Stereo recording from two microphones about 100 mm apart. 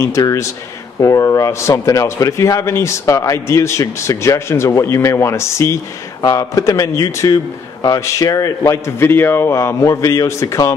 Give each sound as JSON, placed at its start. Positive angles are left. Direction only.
{"t": 0.0, "sound": "a man's voice", "side_deg": 30}